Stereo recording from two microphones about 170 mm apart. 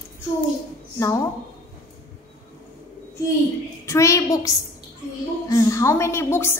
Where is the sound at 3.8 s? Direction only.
15° left (ahead or behind).